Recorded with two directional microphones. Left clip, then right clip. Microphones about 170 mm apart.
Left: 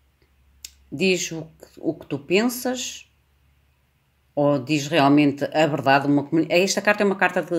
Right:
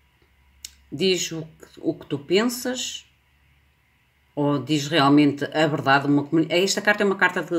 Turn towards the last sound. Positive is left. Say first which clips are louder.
# even
turn(degrees=20)  # may be behind; listen again after turning